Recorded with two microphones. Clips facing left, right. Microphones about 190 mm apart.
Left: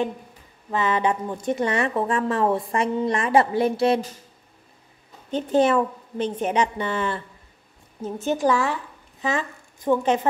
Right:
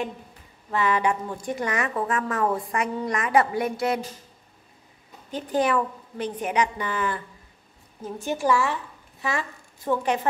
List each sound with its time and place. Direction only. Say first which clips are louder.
0.7 s a woman's voice: left 1 dB; 20° left (ahead or behind)
5.3 s a woman's voice: left 4 dB; 25° left (ahead or behind)